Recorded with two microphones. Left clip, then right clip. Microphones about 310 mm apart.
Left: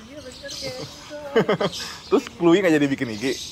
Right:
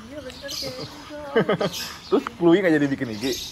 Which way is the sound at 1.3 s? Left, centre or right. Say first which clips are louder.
Left 1 dB; centre.